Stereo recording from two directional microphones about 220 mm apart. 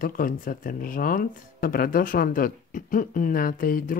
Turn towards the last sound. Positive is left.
turn(degrees=40)  # may be behind; listen again after turning